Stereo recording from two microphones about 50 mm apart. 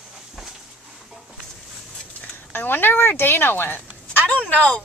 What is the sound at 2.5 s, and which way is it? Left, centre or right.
Speech, left.